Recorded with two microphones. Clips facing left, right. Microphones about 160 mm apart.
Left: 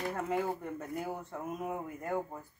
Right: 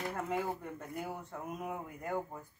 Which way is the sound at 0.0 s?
Centre (ahead or behind).